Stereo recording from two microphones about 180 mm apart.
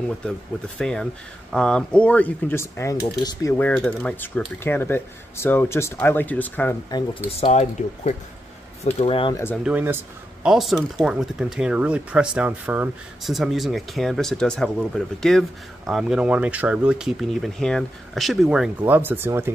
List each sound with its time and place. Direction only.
0.7 s speech: 5° left (ahead or behind)
6.9 s speech: 30° left (ahead or behind)
9.3 s speech: 15° left (ahead or behind)
9.7 s speech: 10° right (ahead or behind)